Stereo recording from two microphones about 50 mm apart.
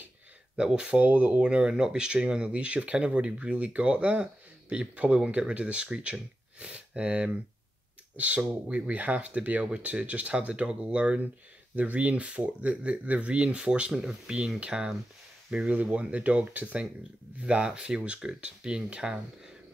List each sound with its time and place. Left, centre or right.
0.6 s speech: centre
1.0 s speech: right
1.4 s speech: right
15.5 s speech: right